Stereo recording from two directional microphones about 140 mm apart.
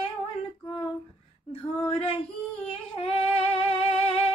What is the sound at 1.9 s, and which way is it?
Female singing, 45° left (ahead or behind).